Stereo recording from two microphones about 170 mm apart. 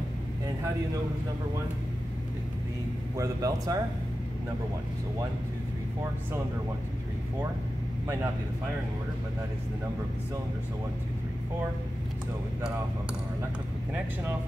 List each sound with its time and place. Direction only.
3.2 s speech: 20° right (ahead or behind)